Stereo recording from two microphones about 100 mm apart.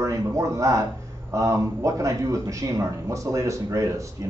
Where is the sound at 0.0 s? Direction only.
30° right (ahead or behind).